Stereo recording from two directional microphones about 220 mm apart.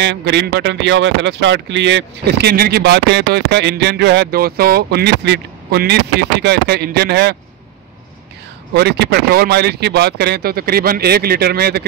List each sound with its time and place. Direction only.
0.0 s speech: 50° right (ahead or behind)
8.7 s speech: 50° right (ahead or behind)